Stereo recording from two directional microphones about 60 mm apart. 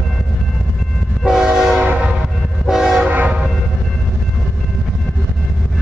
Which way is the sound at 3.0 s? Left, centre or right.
Right.